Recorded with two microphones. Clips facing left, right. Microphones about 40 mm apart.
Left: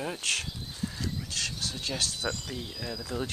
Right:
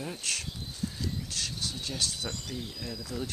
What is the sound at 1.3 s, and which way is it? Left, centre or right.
Speech, left.